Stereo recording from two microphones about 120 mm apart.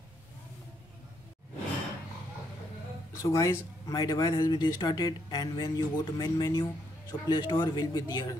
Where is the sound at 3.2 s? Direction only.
25° left (ahead or behind).